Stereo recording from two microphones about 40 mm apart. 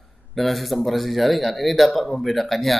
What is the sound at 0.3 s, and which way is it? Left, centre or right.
A man's voice, centre.